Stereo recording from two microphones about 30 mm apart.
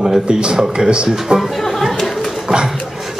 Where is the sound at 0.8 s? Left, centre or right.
Right.